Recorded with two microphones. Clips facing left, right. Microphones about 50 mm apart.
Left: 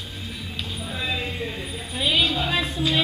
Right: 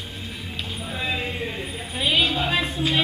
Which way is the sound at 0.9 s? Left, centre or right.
Centre.